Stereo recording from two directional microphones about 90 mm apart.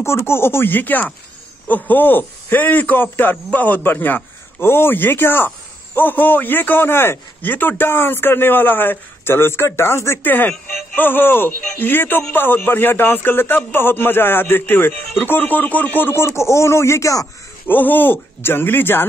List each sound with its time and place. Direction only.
0.0 s a man's voice: 30° left (ahead or behind)
17.6 s a man's voice: 20° left (ahead or behind)